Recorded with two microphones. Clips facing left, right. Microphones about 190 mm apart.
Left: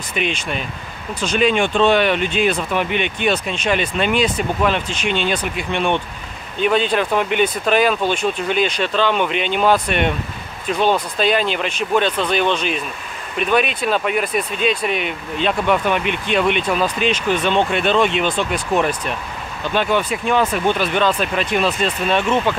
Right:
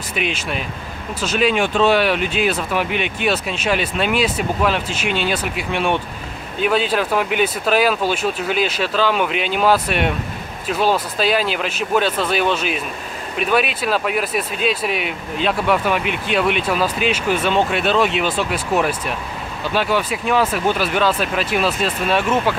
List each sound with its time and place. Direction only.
0.1 s speech: 5° right (ahead or behind)